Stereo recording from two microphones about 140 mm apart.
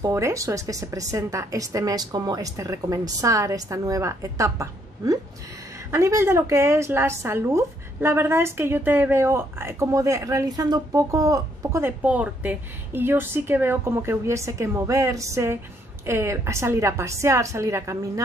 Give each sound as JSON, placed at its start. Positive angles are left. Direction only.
{"t": 0.0, "sound": "a woman's voice", "side_deg": -20}